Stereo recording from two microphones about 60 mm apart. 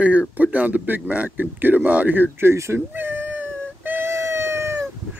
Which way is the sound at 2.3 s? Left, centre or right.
Right.